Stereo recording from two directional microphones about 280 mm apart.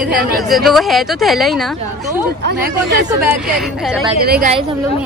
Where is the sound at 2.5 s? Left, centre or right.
Right.